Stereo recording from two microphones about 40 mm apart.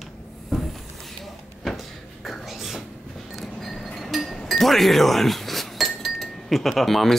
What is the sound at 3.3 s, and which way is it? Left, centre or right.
Vehicle, centre.